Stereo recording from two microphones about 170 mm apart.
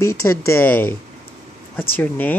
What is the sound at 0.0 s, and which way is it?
Speech, 15° left (ahead or behind).